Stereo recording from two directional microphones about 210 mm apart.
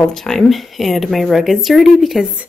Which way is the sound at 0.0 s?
Centre (ahead or behind).